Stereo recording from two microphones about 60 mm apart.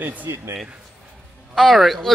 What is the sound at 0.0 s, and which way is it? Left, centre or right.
Speech, right.